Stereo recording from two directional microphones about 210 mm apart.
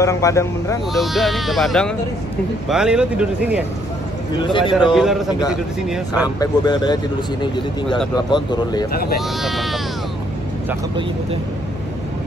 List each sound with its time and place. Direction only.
0.0 s speech: 15° left (ahead or behind)
0.9 s speech: centre (ahead or behind)
4.4 s speech: 25° left (ahead or behind)
4.7 s speech: centre (ahead or behind)
6.2 s speech: 20° left (ahead or behind)
8.9 s speech: 45° left (ahead or behind)
9.4 s speech: centre (ahead or behind)